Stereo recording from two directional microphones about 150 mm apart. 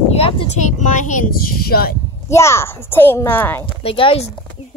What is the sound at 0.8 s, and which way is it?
A child's voice, 55° left (ahead or behind).